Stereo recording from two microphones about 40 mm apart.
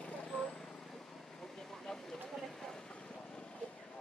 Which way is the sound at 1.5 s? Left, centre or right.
Centre.